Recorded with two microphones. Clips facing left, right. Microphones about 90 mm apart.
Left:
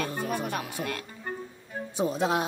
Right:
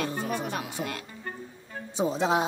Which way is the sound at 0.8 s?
15° right (ahead or behind).